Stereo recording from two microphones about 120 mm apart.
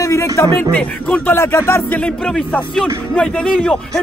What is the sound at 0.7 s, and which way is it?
Speech, 15° left (ahead or behind).